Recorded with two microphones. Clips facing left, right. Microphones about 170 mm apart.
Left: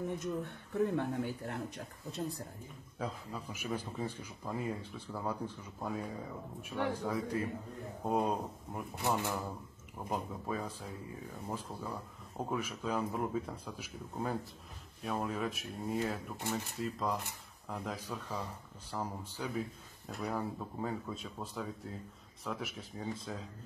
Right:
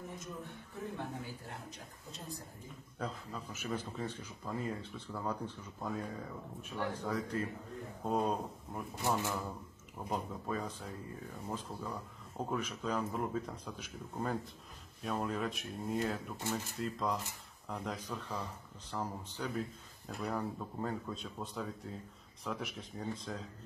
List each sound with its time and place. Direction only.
0.8 s speech: 65° left (ahead or behind)
3.0 s a man's voice: 10° left (ahead or behind)